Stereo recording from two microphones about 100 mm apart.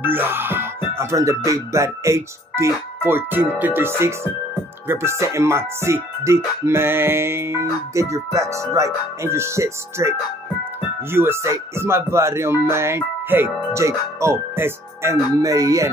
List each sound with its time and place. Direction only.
0.0 s speech: 20° right (ahead or behind)